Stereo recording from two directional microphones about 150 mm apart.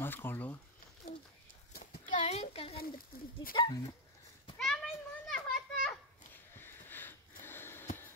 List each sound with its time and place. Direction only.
0.0 s speech: 15° left (ahead or behind)
1.0 s a sound: 65° left (ahead or behind); by 2.8 s 40° left (ahead or behind)
3.1 s speech: 90° left
3.5 s speech: 30° left (ahead or behind)
4.6 s children playing: 5° left (ahead or behind)
6.5 s a sound: 15° left (ahead or behind)